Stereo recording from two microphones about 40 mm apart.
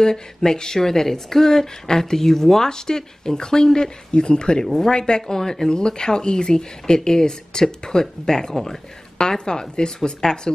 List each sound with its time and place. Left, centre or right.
0.0 s speech: centre
4.6 s speech: centre
4.9 s a woman's voice: centre